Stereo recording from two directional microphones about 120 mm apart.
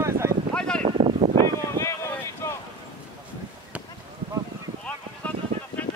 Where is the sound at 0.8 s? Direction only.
75° right (ahead or behind).